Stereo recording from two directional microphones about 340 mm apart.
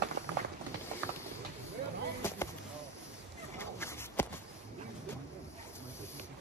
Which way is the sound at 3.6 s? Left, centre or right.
Centre.